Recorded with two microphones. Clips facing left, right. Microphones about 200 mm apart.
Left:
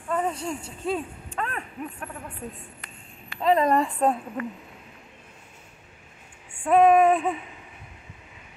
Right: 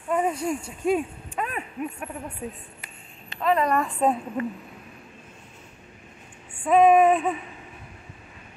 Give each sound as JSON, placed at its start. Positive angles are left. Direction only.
{"t": 0.1, "sound": "speech", "side_deg": -10}
{"t": 3.3, "sound": "a woman's voice", "side_deg": 25}
{"t": 4.4, "sound": "speech", "side_deg": -25}
{"t": 6.6, "sound": "female singing", "side_deg": 0}